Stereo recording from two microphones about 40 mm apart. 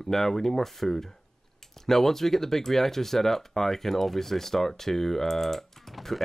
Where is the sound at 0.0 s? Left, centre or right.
Centre.